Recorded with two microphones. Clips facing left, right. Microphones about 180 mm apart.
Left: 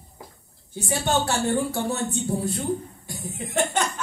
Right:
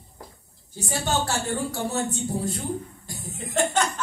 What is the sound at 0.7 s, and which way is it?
Speech, 60° left (ahead or behind).